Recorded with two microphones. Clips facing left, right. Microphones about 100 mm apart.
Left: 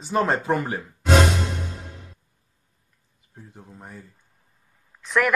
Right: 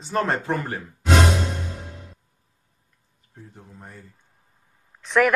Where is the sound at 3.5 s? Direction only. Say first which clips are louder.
Left 3 dB; 5° left (ahead or behind).